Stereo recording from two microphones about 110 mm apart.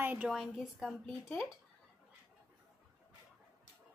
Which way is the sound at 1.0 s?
15° left (ahead or behind).